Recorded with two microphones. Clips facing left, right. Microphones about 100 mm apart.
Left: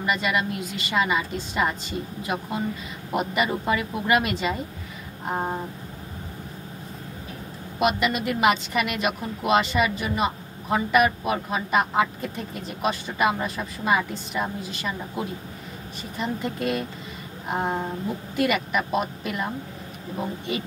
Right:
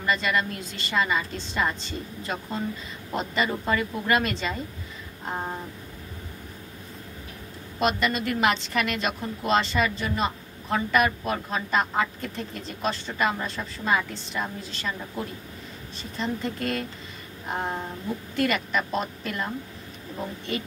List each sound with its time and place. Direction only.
0.0 s speech: 10° left (ahead or behind)
5.3 s a sound: 25° left (ahead or behind)
7.8 s speech: 5° left (ahead or behind)